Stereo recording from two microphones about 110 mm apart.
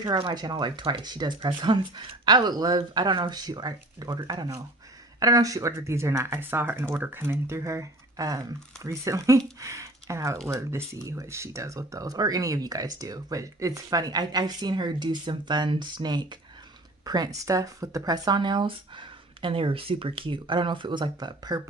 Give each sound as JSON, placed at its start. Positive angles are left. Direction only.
{"t": 0.3, "sound": "speech", "side_deg": -40}